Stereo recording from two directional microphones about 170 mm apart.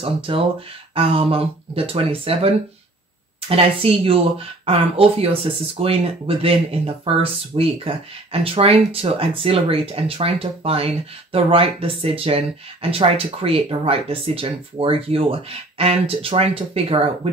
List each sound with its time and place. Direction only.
0.3 s speech: 30° right (ahead or behind)